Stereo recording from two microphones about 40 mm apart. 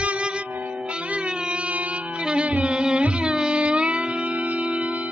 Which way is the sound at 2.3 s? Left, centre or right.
Right.